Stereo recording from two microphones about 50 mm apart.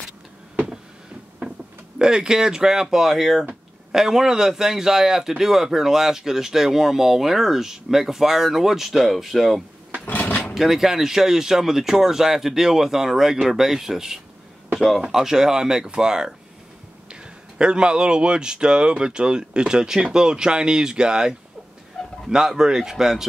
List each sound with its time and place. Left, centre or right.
2.0 s speech: centre
10.0 s drawer open or close: left
10.5 s speech: centre
22.0 s chicken: centre
22.3 s speech: centre